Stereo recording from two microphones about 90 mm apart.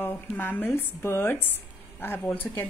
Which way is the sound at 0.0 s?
25° left (ahead or behind).